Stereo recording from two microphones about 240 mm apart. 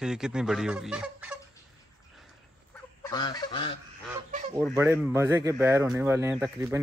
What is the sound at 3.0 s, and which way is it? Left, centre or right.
Goose, centre.